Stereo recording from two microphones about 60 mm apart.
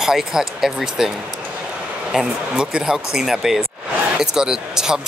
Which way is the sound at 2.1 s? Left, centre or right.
Centre.